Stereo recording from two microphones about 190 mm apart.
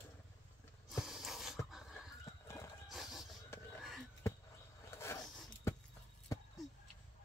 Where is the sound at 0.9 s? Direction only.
Centre (ahead or behind).